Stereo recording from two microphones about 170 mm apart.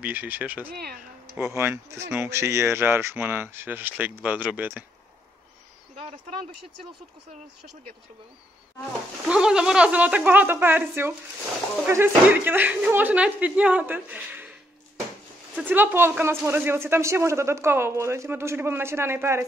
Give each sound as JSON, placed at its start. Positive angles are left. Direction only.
{"t": 0.0, "sound": "speech", "side_deg": -10}
{"t": 6.0, "sound": "speech", "side_deg": -45}
{"t": 9.3, "sound": "speech", "side_deg": -5}
{"t": 15.5, "sound": "speech", "side_deg": -10}